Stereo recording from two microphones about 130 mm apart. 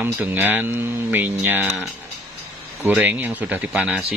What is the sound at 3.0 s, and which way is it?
Speech, 15° right (ahead or behind).